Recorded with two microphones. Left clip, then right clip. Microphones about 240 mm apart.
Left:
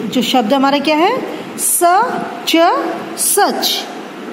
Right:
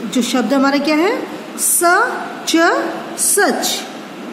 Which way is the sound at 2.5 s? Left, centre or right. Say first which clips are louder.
Left 2 dB; centre.